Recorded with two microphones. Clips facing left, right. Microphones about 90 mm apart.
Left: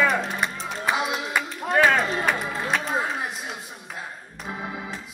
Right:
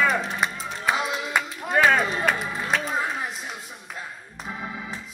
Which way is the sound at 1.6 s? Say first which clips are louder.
Left 1 dB; centre (ahead or behind).